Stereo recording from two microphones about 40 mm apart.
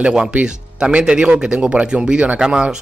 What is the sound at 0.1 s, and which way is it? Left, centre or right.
Speech, right.